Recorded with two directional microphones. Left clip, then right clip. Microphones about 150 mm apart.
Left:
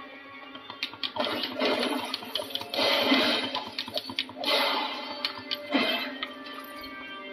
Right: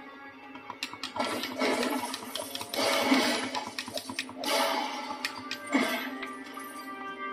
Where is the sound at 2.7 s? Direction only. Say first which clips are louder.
Left 2 dB; 10° left (ahead or behind).